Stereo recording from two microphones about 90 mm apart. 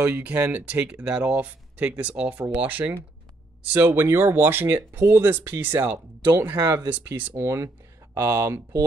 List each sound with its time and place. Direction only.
0.0 s speech: 20° right (ahead or behind)
6.5 s speech: 35° right (ahead or behind)
6.9 s speech: 20° right (ahead or behind)
7.3 s speech: 30° right (ahead or behind)